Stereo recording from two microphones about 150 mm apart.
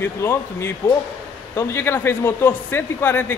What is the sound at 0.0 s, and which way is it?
Speech, 15° left (ahead or behind).